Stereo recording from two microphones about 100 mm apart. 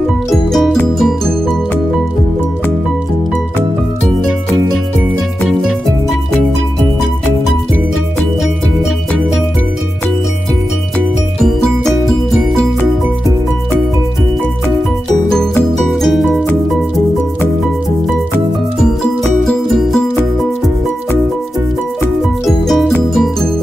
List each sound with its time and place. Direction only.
0.3 s music: centre (ahead or behind)
5.6 s music: 5° right (ahead or behind)
11.3 s music: 5° left (ahead or behind)
15.9 s music: centre (ahead or behind)
19.4 s music: centre (ahead or behind)
22.7 s music: centre (ahead or behind)